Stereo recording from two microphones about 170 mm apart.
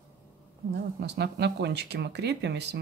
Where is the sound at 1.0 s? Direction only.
80° right.